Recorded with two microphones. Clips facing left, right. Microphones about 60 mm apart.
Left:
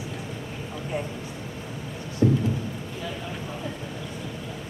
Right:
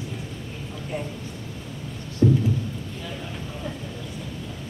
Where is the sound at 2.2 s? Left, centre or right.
Centre.